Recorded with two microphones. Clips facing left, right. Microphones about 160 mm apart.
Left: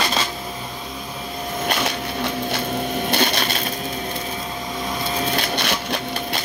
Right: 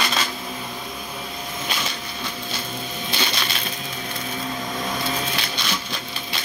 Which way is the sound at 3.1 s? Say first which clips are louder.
Left 5 dB; 50° left (ahead or behind).